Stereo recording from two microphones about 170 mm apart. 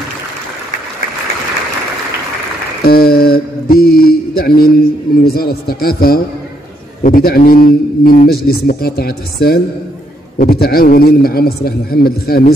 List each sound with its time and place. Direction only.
2.8 s mantra: 65° left (ahead or behind)
5.2 s a man's voice: 65° left (ahead or behind)